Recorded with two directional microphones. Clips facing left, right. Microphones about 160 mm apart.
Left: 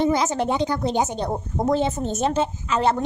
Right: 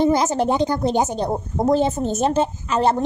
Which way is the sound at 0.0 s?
40° right (ahead or behind).